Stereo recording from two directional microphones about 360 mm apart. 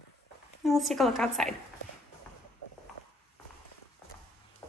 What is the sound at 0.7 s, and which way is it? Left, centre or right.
Speech, centre.